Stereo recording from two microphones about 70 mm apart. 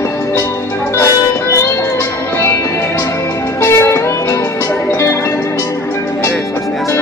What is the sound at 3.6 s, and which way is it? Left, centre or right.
Music, left.